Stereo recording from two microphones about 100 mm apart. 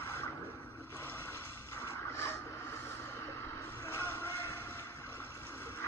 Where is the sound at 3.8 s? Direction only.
20° left (ahead or behind).